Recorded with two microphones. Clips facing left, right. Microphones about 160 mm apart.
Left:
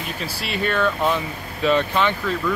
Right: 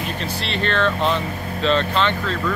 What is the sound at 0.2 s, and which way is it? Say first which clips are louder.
Speech: left 2 dB; 5° left (ahead or behind).